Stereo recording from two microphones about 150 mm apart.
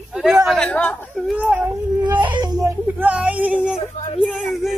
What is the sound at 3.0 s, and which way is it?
Speech, 10° right (ahead or behind).